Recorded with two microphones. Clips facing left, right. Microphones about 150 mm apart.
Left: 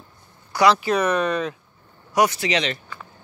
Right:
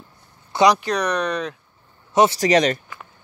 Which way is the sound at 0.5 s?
20° right (ahead or behind).